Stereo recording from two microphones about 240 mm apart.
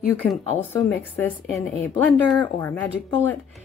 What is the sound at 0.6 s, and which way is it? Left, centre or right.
A woman's voice, centre.